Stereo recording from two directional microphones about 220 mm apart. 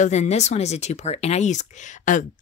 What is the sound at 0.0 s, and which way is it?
Speech, 30° left (ahead or behind).